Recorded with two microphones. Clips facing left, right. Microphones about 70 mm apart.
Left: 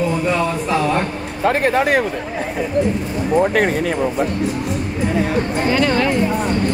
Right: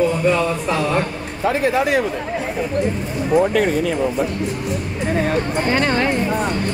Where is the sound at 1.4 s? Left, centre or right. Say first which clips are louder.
Left 2 dB; left.